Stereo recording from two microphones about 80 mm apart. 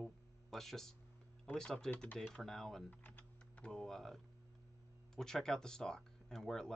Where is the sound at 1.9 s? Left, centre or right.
Centre.